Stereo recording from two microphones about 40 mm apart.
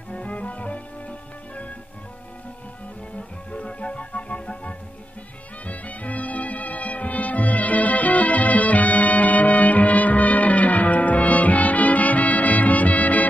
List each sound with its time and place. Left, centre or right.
0.1 s music: left
3.2 s music: left